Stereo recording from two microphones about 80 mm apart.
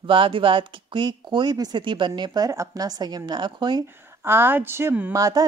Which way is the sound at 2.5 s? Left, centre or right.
Right.